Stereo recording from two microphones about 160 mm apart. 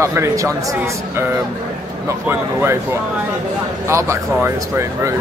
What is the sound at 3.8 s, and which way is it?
Speech, 15° right (ahead or behind).